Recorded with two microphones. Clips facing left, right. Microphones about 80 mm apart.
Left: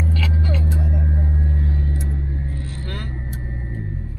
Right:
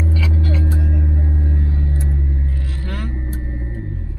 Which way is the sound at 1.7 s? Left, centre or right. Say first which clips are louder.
Right 2 dB; right.